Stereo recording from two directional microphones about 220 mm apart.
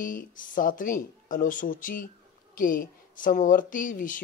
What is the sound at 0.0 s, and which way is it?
Speech, 40° left (ahead or behind).